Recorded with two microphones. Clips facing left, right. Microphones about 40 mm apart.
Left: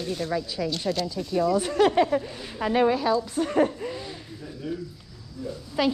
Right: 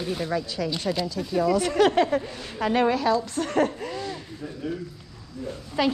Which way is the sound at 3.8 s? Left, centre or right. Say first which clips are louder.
Right 2 dB; centre.